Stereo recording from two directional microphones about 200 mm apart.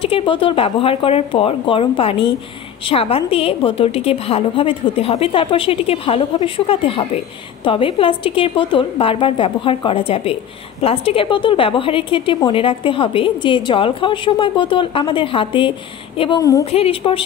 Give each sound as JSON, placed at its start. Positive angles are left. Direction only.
{"t": 0.0, "sound": "a woman's voice", "side_deg": 25}
{"t": 16.7, "sound": "a woman's voice", "side_deg": 30}